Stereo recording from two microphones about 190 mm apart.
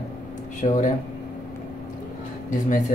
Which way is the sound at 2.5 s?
40° left (ahead or behind).